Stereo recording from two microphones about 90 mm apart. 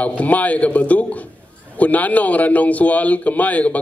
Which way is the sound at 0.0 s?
15° left (ahead or behind).